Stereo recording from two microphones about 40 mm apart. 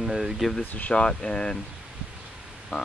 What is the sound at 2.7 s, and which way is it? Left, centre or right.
Speech, left.